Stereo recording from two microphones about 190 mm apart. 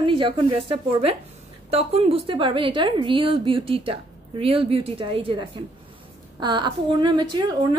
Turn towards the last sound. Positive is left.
turn(degrees=-20)  # may be behind; listen again after turning